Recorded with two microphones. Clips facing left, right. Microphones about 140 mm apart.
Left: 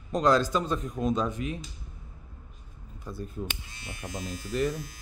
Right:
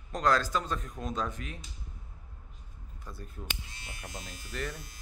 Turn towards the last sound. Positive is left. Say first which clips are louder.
# left 10 dB
turn(degrees=15)  # may be behind; listen again after turning